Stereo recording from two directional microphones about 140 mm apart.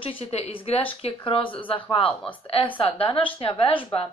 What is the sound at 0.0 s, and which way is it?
A woman's voice, 45° left (ahead or behind).